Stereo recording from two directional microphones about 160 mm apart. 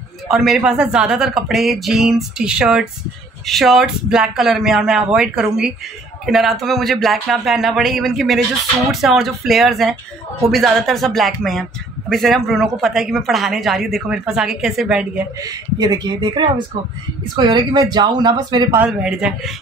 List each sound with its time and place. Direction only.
0.3 s speech: 5° right (ahead or behind)
15.4 s speech: 25° right (ahead or behind)
18.8 s speech: 5° right (ahead or behind)